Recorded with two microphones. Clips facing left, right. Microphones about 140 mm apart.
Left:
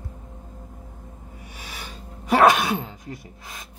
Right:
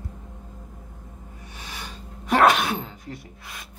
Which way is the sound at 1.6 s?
5° left (ahead or behind).